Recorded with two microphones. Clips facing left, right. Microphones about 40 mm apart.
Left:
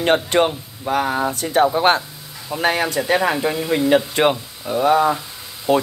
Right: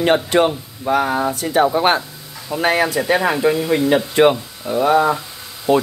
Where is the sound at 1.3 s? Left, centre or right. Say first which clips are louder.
Left 1 dB; right.